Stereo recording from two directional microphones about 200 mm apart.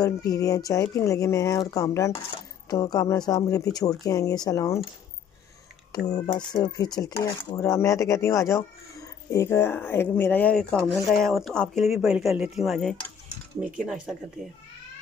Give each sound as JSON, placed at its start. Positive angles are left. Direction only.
{"t": 0.0, "sound": "speech", "side_deg": 15}
{"t": 6.2, "sound": "speech", "side_deg": 20}